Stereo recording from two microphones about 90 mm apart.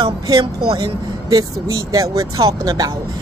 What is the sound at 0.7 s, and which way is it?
Speech, 45° right (ahead or behind).